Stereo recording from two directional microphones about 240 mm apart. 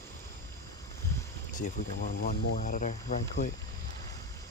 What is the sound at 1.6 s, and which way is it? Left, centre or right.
Speech, left.